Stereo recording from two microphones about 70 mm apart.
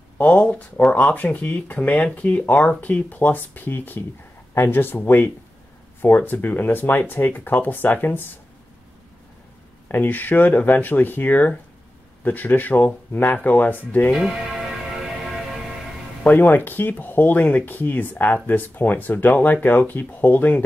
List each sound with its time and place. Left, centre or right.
0.2 s speech: left
9.8 s speech: left
14.1 s music: centre
16.3 s speech: left